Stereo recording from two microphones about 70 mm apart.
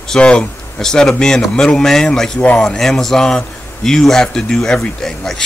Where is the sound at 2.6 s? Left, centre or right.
Centre.